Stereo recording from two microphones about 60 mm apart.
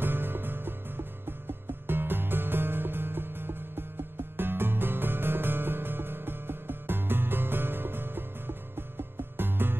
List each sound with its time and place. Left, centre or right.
0.0 s music: right